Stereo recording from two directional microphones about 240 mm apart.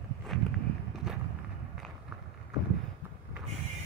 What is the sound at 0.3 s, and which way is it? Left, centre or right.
Walk, centre.